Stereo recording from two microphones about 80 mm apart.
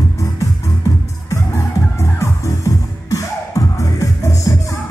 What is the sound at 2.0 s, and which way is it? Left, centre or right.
Music, left.